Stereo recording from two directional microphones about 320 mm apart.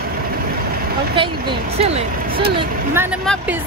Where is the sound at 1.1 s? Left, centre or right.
Centre.